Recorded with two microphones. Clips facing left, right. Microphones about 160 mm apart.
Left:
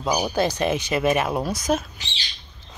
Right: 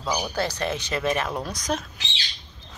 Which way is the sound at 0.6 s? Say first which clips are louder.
Left 5 dB; 10° left (ahead or behind).